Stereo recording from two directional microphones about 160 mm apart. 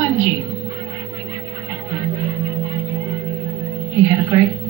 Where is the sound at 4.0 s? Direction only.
20° right (ahead or behind).